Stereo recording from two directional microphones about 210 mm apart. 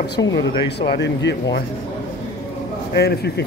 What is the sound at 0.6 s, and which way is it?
Speech, 55° left (ahead or behind).